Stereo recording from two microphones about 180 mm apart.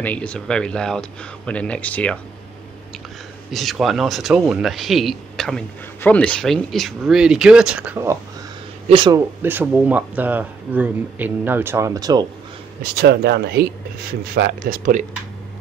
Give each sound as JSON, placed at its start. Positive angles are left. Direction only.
{"t": 0.0, "sound": "speech", "side_deg": 5}
{"t": 3.5, "sound": "speech", "side_deg": 0}
{"t": 8.8, "sound": "speech", "side_deg": -25}
{"t": 9.4, "sound": "speech", "side_deg": -10}
{"t": 12.9, "sound": "speech", "side_deg": -65}